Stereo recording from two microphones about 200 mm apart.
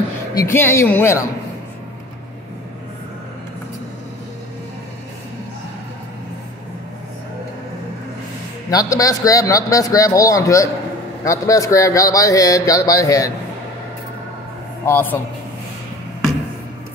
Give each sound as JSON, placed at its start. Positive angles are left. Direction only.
{"t": 0.3, "sound": "a man's voice", "side_deg": 15}
{"t": 8.6, "sound": "a man's voice", "side_deg": 15}
{"t": 14.9, "sound": "a man's voice", "side_deg": 10}